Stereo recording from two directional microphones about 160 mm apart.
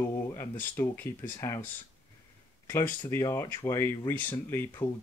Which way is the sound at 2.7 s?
15° left (ahead or behind).